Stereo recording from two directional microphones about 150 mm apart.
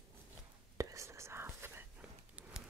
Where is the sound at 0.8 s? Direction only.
20° right (ahead or behind).